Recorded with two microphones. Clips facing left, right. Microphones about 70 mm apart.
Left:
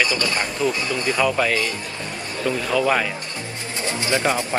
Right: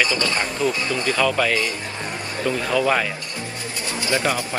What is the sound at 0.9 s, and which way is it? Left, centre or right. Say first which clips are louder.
Speech: even; centre.